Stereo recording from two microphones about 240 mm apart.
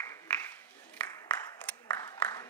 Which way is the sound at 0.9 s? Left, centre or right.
Centre.